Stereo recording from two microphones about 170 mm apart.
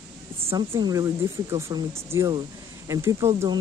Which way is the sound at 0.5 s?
25° right (ahead or behind).